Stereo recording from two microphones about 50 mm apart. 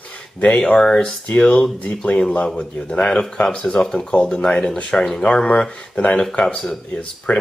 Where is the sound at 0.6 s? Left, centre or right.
Centre.